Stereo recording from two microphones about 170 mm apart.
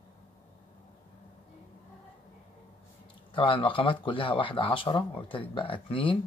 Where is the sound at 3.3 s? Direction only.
30° left (ahead or behind).